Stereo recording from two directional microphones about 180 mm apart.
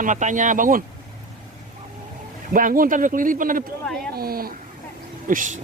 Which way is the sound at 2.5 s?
50° right (ahead or behind).